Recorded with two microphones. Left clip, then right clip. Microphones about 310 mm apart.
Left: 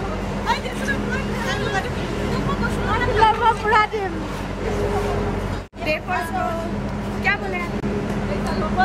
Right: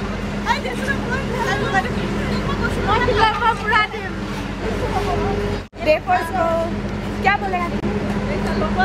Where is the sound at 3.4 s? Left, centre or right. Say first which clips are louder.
Even; left.